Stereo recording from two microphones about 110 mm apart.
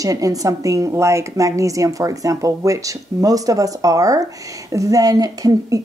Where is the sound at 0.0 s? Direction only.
30° right (ahead or behind).